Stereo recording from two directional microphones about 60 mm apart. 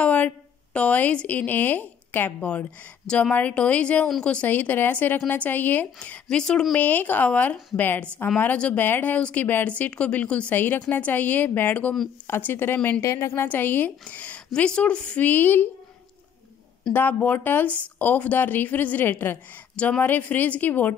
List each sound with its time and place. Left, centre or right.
0.0 s a sound: left
0.7 s speech: left
3.1 s speech: centre
4.5 s a woman's voice: left
5.9 s speech: centre
6.7 s a woman's voice: left
10.5 s a woman's voice: left
13.0 s speech: left
13.3 s speech: left; by 15.2 s centre
15.2 s a woman's voice: left
16.9 s speech: left
19.7 s speech: centre